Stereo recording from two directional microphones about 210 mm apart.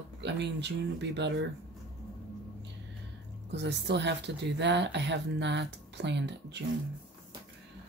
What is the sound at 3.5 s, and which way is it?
Speech, 55° right (ahead or behind).